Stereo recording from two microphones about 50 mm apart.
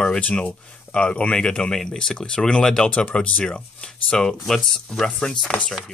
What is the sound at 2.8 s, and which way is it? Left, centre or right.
Speech, left.